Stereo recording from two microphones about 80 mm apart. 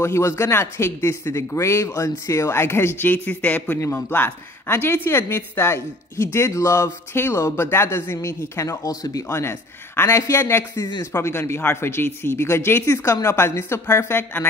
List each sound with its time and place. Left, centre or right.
0.0 s speech: left
9.3 s speech: left